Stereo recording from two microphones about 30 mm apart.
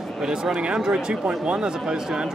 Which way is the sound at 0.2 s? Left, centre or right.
Right.